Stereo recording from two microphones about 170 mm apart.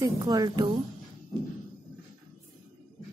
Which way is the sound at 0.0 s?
25° right (ahead or behind).